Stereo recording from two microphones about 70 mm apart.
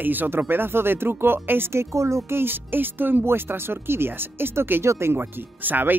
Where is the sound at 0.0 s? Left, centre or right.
Right.